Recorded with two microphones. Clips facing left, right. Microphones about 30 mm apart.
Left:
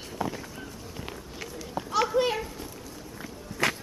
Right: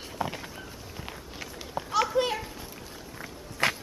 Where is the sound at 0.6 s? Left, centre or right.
Centre.